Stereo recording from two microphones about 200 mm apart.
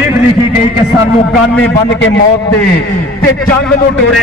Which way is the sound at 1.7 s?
60° left (ahead or behind).